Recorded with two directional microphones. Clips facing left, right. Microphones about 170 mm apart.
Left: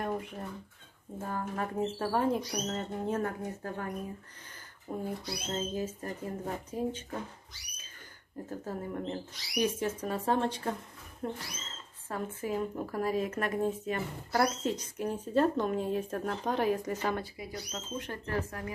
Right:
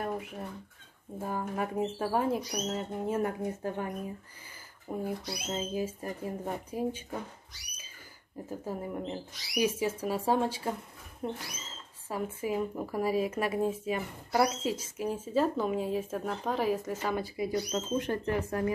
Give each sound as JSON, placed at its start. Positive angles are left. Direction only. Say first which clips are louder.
{"t": 0.0, "sound": "speech", "louder": "even", "side_deg": -5}
{"t": 8.5, "sound": "speech", "louder": "right 1 dB", "side_deg": -10}
{"t": 17.6, "sound": "speech", "louder": "right 8 dB", "side_deg": -20}